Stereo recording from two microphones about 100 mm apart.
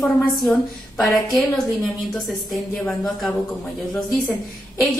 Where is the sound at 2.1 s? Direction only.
5° left (ahead or behind).